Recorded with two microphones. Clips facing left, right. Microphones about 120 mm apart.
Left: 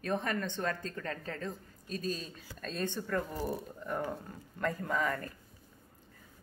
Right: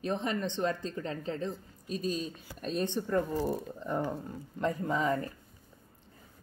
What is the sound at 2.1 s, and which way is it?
Speech, 20° right (ahead or behind).